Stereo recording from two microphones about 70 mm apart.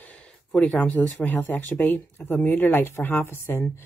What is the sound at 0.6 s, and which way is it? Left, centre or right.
Speech, left.